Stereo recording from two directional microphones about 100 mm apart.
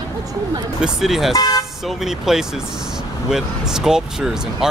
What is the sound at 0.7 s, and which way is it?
Speech, 5° right (ahead or behind).